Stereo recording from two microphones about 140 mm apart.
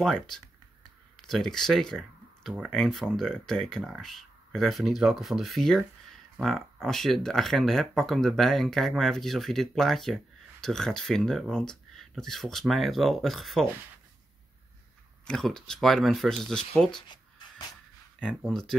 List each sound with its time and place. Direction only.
0.0 s speech: 5° left (ahead or behind)
15.2 s speech: 5° left (ahead or behind)
17.1 s writing: 30° left (ahead or behind)
18.2 s speech: 5° left (ahead or behind)